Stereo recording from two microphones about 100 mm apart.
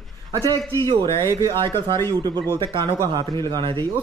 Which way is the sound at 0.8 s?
50° right (ahead or behind).